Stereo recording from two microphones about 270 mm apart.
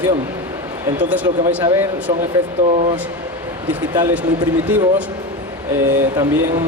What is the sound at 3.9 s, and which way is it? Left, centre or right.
A man's voice, centre.